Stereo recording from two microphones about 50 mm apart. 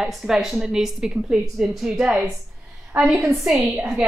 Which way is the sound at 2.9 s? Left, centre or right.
Right.